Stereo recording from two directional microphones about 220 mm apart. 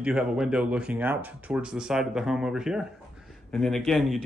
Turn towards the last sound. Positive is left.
turn(degrees=0)  # may be behind; listen again after turning